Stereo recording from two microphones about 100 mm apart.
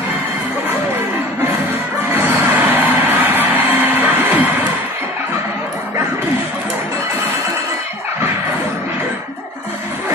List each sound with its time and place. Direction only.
2.1 s music: 20° right (ahead or behind)